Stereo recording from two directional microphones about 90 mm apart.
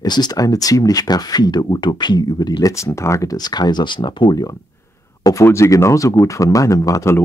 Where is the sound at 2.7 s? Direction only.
35° left (ahead or behind); by 4.4 s 60° left (ahead or behind).